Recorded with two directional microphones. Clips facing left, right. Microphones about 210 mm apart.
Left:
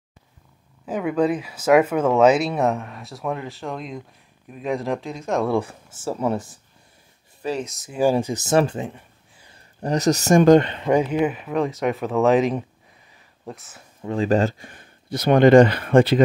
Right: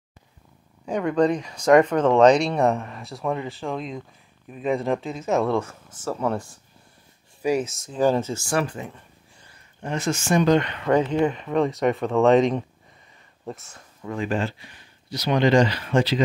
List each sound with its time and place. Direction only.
0.8 s speech: 5° left (ahead or behind)
5.5 s speech: 15° left (ahead or behind)
7.6 s speech: centre (ahead or behind)
7.9 s speech: 10° left (ahead or behind); by 8.9 s 25° left (ahead or behind)
9.8 s speech: 40° left (ahead or behind)
10.6 s speech: 30° left (ahead or behind)
10.9 s speech: 10° left (ahead or behind)
14.0 s speech: 35° left (ahead or behind); by 16.2 s 55° left (ahead or behind)